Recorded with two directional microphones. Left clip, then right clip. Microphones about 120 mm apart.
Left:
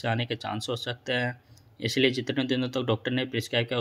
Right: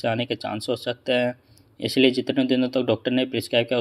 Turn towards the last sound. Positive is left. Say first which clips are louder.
# right 6 dB
turn(degrees=-20)  # may be behind; listen again after turning